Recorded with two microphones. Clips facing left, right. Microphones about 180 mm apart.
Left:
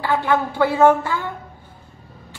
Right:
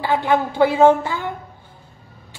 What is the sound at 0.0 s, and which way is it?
Speech, 15° right (ahead or behind).